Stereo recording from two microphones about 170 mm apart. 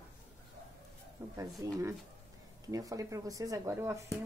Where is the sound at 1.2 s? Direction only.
10° right (ahead or behind).